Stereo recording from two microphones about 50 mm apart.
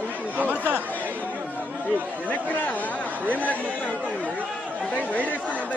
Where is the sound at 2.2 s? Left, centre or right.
Left.